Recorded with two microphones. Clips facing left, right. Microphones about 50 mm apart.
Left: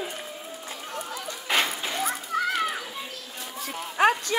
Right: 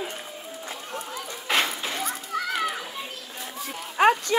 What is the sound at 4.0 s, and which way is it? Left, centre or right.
Clip-clop, right.